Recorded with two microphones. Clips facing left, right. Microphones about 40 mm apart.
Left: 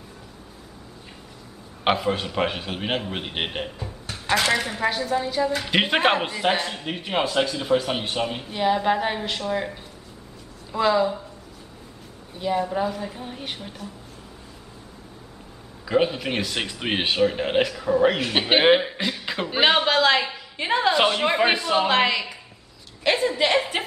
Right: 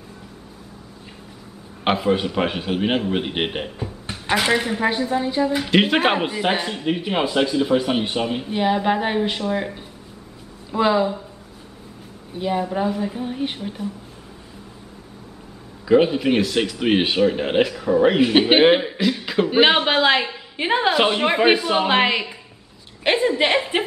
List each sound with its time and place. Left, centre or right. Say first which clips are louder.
1.9 s a woman's voice: right 3 dB; centre
12.4 s a woman's voice: right 2 dB; centre
15.8 s speech: right 6 dB; centre
18.6 s speech: right 3 dB; centre
19.5 s a woman's voice: right 2 dB; centre